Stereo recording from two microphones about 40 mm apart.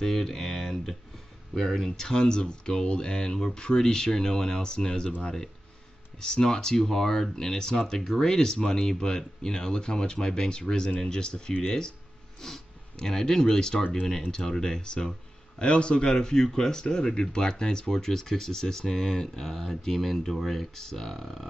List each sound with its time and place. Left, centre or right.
0.0 s speech: centre
6.1 s speech: centre
20.7 s speech: centre